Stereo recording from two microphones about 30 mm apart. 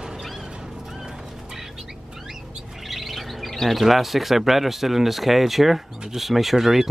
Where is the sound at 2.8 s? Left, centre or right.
Centre.